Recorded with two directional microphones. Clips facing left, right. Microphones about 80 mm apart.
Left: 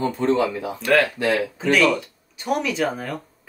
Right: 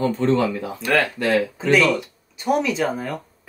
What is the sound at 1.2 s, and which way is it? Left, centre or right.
Speech, centre.